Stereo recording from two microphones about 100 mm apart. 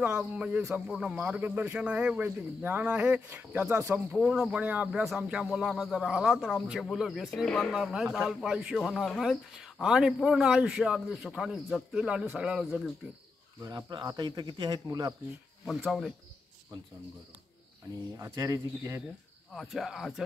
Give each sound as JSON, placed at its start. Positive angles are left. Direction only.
{"t": 0.0, "sound": "a man's voice", "side_deg": -15}
{"t": 4.1, "sound": "a man's voice", "side_deg": -5}
{"t": 7.7, "sound": "a man's voice", "side_deg": -5}
{"t": 13.6, "sound": "speech", "side_deg": -40}
{"t": 15.6, "sound": "speech", "side_deg": 0}
{"t": 18.1, "sound": "speech", "side_deg": -30}
{"t": 19.5, "sound": "speech", "side_deg": 0}